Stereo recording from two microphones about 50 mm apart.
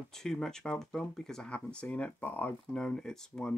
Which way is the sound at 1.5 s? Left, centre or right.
Left.